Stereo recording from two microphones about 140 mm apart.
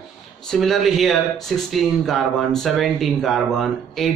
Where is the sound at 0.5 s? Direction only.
Centre (ahead or behind).